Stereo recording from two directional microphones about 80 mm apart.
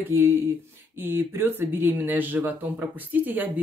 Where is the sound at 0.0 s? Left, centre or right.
Right.